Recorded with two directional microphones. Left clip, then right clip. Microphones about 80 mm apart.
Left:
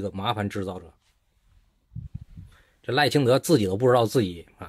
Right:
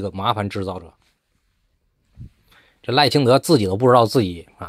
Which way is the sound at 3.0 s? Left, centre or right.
Right.